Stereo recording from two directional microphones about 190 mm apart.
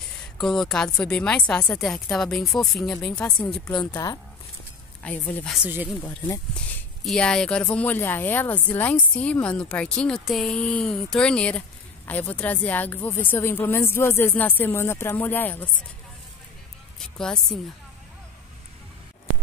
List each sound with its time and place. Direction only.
0.4 s speech: centre (ahead or behind)
3.9 s speech: 20° left (ahead or behind)
5.0 s a woman's voice: 10° left (ahead or behind)
5.6 s speech: 10° right (ahead or behind)
6.0 s a woman's voice: 10° left (ahead or behind)
17.0 s speech: centre (ahead or behind)